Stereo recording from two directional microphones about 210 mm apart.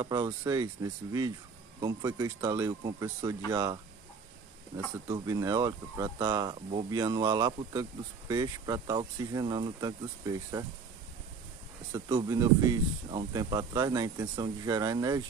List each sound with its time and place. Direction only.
0.0 s speech: 20° right (ahead or behind)
1.8 s speech: 20° right (ahead or behind)
11.9 s speech: 20° right (ahead or behind)